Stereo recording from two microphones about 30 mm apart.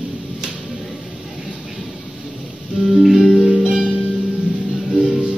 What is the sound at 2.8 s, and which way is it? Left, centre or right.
Music, centre.